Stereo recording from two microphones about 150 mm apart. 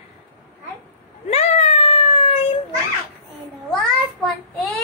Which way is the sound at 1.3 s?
45° left (ahead or behind).